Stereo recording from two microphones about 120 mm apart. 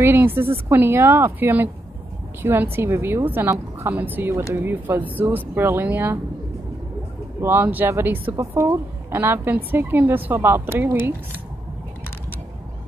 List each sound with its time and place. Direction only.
0.0 s a woman's voice: 20° right (ahead or behind)
7.4 s a woman's voice: 15° right (ahead or behind)